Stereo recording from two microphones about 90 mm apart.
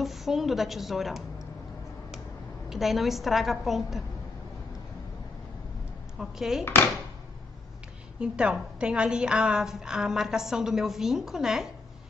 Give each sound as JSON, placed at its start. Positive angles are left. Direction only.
{"t": 0.0, "sound": "a woman's voice", "side_deg": 0}
{"t": 2.7, "sound": "a woman's voice", "side_deg": 0}
{"t": 6.1, "sound": "a woman's voice", "side_deg": -5}
{"t": 6.6, "sound": "speech", "side_deg": 25}
{"t": 8.2, "sound": "a woman's voice", "side_deg": -10}